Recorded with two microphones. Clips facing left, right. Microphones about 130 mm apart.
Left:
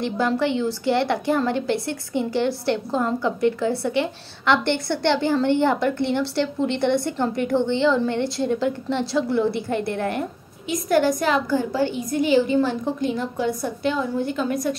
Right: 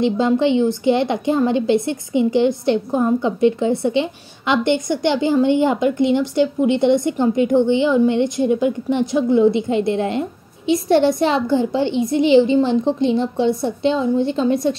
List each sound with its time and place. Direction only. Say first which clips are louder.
0.0 s a woman's voice: right 6 dB; 20° right (ahead or behind)